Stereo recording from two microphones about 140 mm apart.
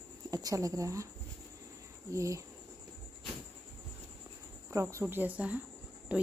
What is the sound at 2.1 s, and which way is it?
Speech, 20° right (ahead or behind).